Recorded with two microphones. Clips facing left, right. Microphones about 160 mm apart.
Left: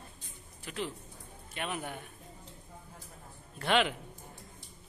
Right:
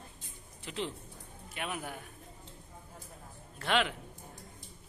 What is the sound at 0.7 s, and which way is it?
Speech, 20° right (ahead or behind).